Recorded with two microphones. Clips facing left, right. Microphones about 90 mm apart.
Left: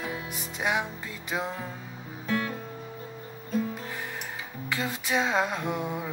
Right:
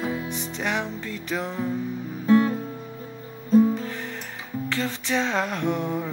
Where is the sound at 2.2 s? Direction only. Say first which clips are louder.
Right 11 dB; 30° right (ahead or behind).